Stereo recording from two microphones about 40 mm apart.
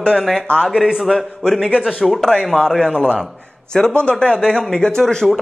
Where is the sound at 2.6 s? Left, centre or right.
Centre.